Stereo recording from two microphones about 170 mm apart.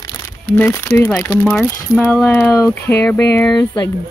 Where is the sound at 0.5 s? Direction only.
10° left (ahead or behind).